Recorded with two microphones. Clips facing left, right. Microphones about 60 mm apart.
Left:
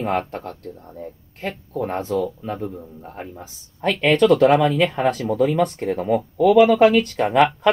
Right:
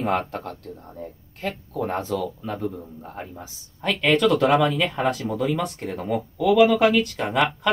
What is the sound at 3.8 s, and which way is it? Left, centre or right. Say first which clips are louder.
Speech: left 3 dB; left.